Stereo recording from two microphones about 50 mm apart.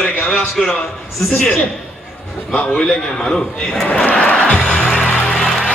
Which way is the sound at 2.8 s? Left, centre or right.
Centre.